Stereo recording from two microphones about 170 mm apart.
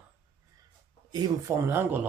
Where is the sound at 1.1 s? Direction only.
20° right (ahead or behind).